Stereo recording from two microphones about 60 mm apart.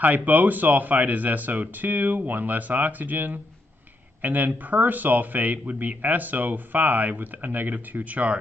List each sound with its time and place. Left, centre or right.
0.0 s speech: right